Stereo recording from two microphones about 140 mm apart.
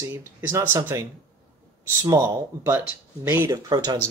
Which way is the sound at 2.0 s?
20° right (ahead or behind).